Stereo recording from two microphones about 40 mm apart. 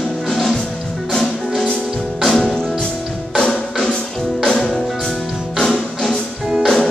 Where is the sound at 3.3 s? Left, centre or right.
Left.